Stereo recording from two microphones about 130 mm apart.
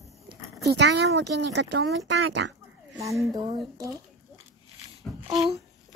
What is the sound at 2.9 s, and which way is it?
Speech, 25° right (ahead or behind).